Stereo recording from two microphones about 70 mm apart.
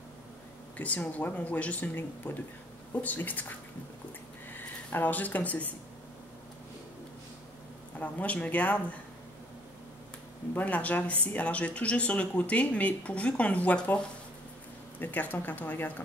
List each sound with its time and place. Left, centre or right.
0.7 s speech: left
8.0 s speech: left
10.5 s speech: left